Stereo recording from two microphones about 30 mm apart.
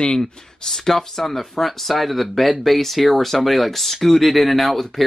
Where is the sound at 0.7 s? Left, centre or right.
Centre.